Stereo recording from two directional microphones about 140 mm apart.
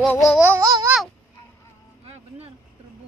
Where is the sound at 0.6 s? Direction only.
25° right (ahead or behind).